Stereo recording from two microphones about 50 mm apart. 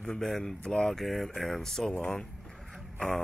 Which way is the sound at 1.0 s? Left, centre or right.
Centre.